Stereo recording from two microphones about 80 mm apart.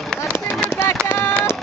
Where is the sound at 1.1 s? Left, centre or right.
Left.